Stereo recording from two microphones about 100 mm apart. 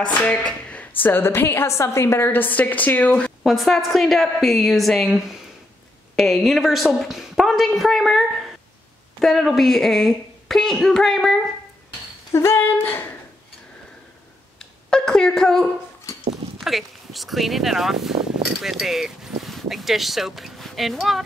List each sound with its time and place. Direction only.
0.0 s a sound: 10° left (ahead or behind)
1.0 s a woman's voice: 20° left (ahead or behind)
3.4 s a woman's voice: centre (ahead or behind)
12.3 s a woman's voice: 30° left (ahead or behind)
14.6 s speech: 5° left (ahead or behind)